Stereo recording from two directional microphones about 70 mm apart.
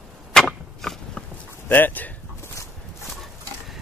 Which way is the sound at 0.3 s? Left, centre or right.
Centre.